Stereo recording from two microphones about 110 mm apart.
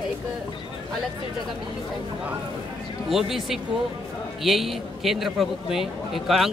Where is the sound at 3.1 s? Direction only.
Centre (ahead or behind).